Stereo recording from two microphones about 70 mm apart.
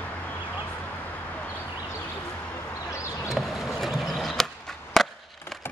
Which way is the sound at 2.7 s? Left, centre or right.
Left.